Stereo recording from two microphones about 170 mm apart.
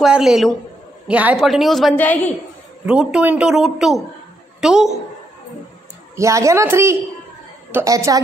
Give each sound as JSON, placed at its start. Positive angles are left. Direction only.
{"t": 0.0, "sound": "a woman's voice", "side_deg": 0}
{"t": 2.9, "sound": "a woman's voice", "side_deg": -5}
{"t": 6.1, "sound": "a woman's voice", "side_deg": -15}